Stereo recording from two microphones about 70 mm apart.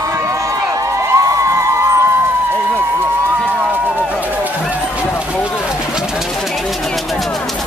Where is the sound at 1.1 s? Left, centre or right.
Right.